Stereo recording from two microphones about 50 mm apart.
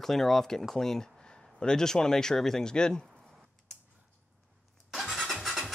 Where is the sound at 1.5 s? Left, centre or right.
Centre.